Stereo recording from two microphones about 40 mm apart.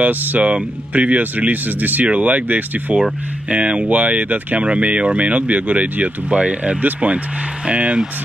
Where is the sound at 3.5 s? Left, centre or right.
Right.